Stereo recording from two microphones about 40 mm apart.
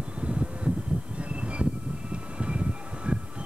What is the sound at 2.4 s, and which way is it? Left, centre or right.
Vehicle, right.